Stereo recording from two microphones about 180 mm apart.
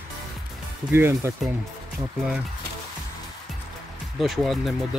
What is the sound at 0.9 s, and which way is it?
Speech, 15° right (ahead or behind).